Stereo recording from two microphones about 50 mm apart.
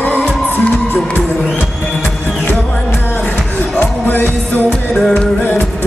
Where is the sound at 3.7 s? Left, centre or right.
Left.